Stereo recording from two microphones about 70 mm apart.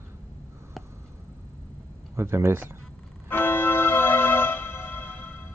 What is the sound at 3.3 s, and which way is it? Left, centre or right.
Music, left.